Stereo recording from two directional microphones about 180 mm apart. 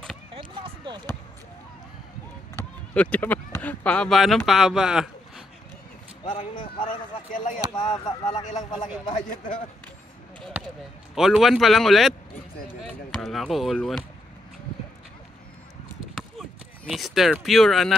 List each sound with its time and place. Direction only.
0.3 s basketball bounce: 30° right (ahead or behind)
2.9 s speech: 10° left (ahead or behind)
6.5 s speech: 25° left (ahead or behind)
9.1 s speech: 45° left (ahead or behind)
11.1 s speech: centre (ahead or behind)
16.2 s speech: centre (ahead or behind)